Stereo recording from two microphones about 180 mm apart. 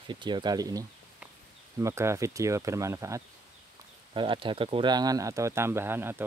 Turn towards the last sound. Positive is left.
turn(degrees=-10)  # may be behind; listen again after turning